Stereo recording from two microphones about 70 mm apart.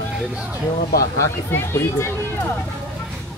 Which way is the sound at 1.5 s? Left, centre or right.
Left.